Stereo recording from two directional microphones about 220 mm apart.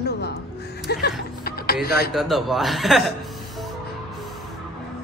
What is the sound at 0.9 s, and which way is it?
Speech, 45° left (ahead or behind).